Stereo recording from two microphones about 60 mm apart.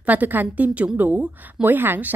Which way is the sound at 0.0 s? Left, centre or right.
Right.